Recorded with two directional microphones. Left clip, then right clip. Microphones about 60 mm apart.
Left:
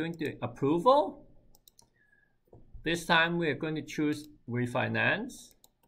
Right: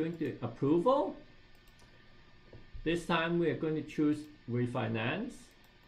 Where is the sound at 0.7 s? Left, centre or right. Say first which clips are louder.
Left 4 dB; left.